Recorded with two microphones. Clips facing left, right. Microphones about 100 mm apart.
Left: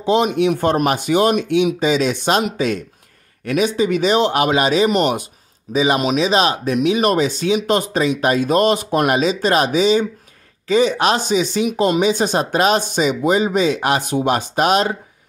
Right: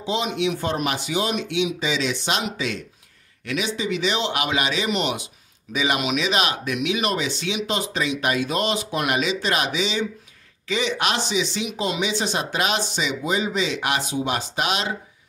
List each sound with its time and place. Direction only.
0.0 s speech: 50° left (ahead or behind)
5.8 s speech: 35° left (ahead or behind)
14.0 s speech: 50° left (ahead or behind)